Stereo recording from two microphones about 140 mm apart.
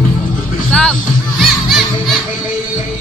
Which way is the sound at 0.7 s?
5° left (ahead or behind).